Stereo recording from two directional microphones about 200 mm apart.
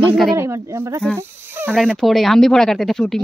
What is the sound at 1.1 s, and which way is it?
Snake, 10° right (ahead or behind).